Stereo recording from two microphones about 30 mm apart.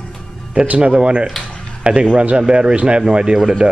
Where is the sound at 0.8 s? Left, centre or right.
Right.